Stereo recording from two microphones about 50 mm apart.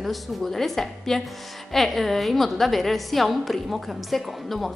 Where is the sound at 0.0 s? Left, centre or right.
Centre.